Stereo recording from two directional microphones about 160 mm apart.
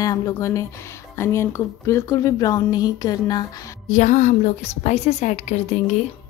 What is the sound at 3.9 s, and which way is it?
A woman's voice, 50° left (ahead or behind).